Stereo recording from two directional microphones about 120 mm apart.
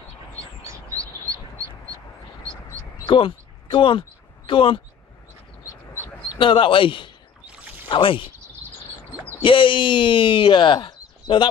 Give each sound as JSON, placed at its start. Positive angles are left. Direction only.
{"t": 0.9, "sound": "bird", "side_deg": -25}
{"t": 3.1, "sound": "a sound", "side_deg": 45}
{"t": 4.5, "sound": "speech", "side_deg": 45}
{"t": 6.3, "sound": "speech", "side_deg": 45}
{"t": 9.4, "sound": "speech", "side_deg": 45}